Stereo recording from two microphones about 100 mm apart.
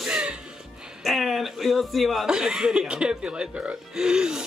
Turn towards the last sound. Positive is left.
turn(degrees=-5)  # may be behind; listen again after turning